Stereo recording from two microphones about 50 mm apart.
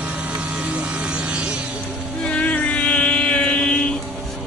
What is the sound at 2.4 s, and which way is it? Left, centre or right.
Mantra, left.